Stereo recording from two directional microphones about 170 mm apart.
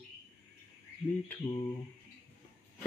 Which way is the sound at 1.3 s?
10° left (ahead or behind).